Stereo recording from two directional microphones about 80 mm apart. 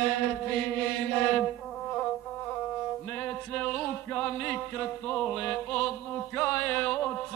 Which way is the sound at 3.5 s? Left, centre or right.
Centre.